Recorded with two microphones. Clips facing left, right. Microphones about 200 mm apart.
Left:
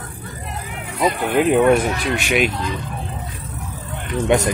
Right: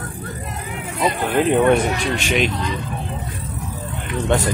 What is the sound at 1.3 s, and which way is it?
Speech, 5° left (ahead or behind).